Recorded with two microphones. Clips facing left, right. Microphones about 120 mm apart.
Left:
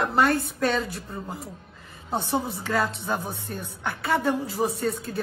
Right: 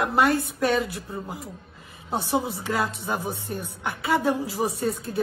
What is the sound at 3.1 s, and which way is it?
Speech, 15° right (ahead or behind).